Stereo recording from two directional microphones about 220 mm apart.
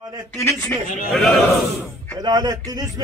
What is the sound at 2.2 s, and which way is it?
Speech, 20° right (ahead or behind).